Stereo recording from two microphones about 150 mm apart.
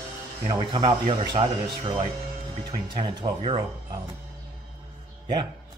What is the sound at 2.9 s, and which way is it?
Speech, 35° right (ahead or behind).